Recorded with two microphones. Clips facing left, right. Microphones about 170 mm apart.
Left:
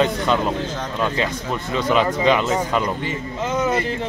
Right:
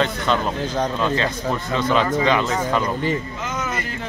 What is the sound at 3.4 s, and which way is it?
Speech, 30° left (ahead or behind).